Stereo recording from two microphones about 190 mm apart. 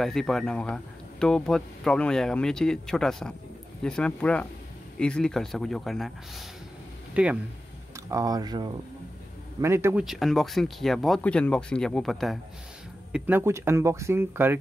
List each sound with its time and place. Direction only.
0.0 s speech: centre (ahead or behind)
7.2 s speech: 5° right (ahead or behind)
7.9 s speech: 20° right (ahead or behind)
10.0 s speech: centre (ahead or behind)
13.1 s speech: 10° right (ahead or behind)